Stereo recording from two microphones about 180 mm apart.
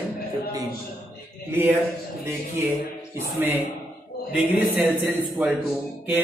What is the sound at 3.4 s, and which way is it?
Speech, 10° right (ahead or behind).